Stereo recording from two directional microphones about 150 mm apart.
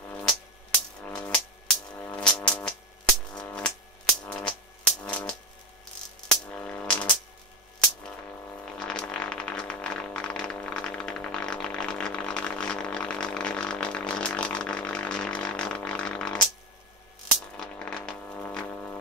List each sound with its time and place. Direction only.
0.1 s music: 5° left (ahead or behind)
6.2 s music: 5° left (ahead or behind)
8.6 s music: 5° left (ahead or behind)
17.6 s music: 5° left (ahead or behind)